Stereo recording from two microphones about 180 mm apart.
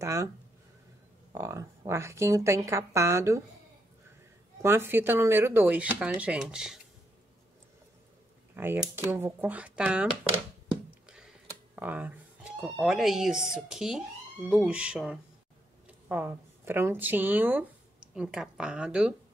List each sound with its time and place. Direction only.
0.0 s speech: 15° right (ahead or behind)
1.3 s speech: 15° right (ahead or behind)
4.6 s speech: 15° right (ahead or behind)
8.5 s a woman's voice: 10° right (ahead or behind)